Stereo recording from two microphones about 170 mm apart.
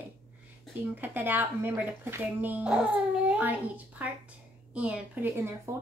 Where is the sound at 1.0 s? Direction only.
10° right (ahead or behind).